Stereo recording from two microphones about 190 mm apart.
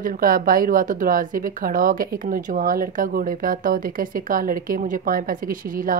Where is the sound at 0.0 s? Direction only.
50° right (ahead or behind).